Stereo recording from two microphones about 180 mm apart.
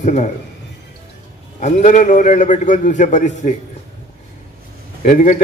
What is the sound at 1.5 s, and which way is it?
A man's voice, 40° left (ahead or behind).